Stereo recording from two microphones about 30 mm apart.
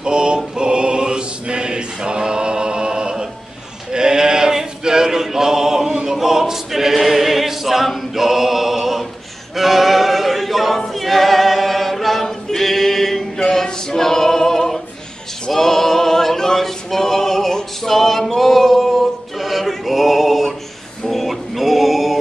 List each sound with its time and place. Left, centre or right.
0.0 s choir: right
3.9 s a sound: right
4.6 s male singing: right
6.0 s choir: centre
12.3 s a capella: centre
17.8 s male singing: centre
19.3 s music: centre
19.8 s male singing: centre